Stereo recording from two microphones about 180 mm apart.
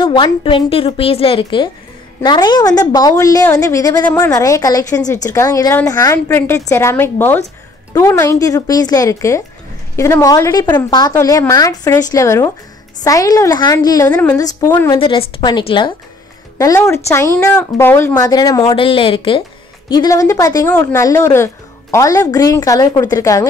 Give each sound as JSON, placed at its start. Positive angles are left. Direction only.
{"t": 0.0, "sound": "a woman's voice", "side_deg": 30}
{"t": 15.0, "sound": "a woman's voice", "side_deg": 30}